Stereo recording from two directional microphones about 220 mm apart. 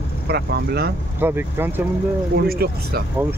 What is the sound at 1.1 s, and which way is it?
Speech, 10° right (ahead or behind).